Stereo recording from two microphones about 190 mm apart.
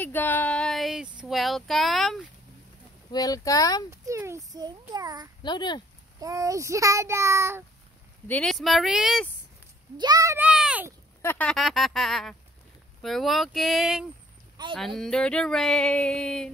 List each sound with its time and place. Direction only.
0.0 s speech: 10° left (ahead or behind)
3.1 s speech: 20° left (ahead or behind)
3.9 s a child's voice: 15° right (ahead or behind)
5.4 s speech: 25° left (ahead or behind)
6.1 s a child's voice: 15° right (ahead or behind)
8.3 s a sound: 5° left (ahead or behind)
9.9 s a child's voice: 20° right (ahead or behind); by 10.9 s 5° right (ahead or behind)
11.2 s a sound: 5° left (ahead or behind)
14.6 s speech: 20° right (ahead or behind)
15.0 s a sound: 5° left (ahead or behind)